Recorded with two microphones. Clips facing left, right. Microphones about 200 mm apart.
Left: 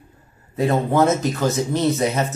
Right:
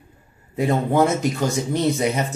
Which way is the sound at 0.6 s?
15° right (ahead or behind).